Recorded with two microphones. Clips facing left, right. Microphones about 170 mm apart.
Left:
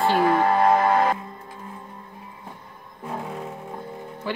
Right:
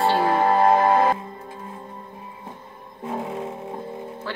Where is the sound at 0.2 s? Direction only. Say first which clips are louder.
Even; 25° right (ahead or behind).